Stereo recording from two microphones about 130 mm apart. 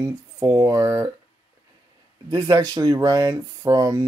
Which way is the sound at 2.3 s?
25° right (ahead or behind).